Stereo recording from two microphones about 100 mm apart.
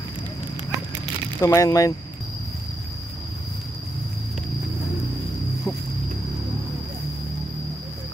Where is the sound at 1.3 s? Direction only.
30° left (ahead or behind).